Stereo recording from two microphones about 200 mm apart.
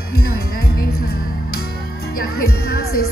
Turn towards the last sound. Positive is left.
turn(degrees=50)  # may be behind; listen again after turning